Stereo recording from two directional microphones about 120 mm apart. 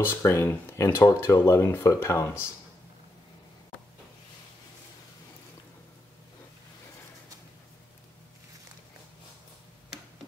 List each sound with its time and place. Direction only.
0.0 s speech: 20° left (ahead or behind)